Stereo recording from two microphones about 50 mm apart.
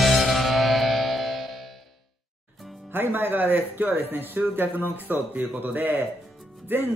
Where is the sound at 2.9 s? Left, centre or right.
Right.